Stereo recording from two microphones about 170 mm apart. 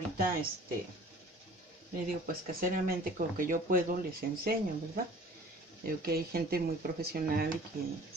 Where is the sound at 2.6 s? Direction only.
55° right (ahead or behind).